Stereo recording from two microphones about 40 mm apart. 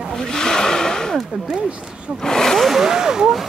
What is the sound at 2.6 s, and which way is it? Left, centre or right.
Speech, centre.